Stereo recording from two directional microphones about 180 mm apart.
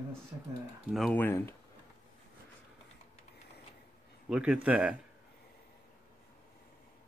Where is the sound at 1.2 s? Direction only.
15° left (ahead or behind).